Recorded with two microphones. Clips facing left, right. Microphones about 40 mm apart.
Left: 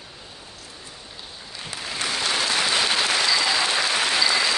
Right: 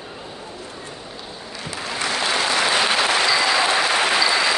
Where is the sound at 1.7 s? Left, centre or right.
Right.